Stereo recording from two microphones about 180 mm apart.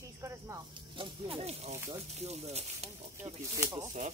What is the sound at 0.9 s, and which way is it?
Speech, 35° right (ahead or behind).